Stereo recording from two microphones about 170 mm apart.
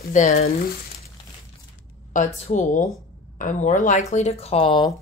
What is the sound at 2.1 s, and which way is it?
Speech, 45° left (ahead or behind).